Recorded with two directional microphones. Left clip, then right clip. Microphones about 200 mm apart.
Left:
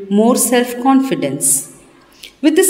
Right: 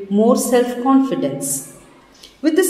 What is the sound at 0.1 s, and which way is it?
A woman's voice, 50° left (ahead or behind).